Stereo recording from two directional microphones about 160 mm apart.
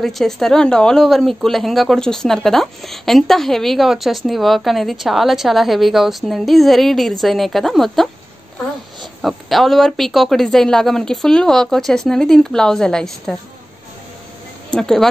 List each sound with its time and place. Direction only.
0.0 s speech: centre (ahead or behind)
9.2 s speech: centre (ahead or behind)
14.7 s speech: 5° left (ahead or behind)